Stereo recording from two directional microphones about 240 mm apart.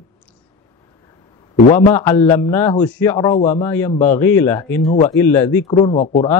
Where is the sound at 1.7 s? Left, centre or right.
Centre.